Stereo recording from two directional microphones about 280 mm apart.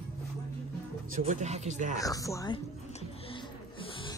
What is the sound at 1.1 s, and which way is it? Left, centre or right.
Speech, right.